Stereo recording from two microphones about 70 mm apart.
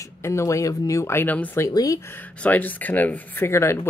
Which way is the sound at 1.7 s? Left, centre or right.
Left.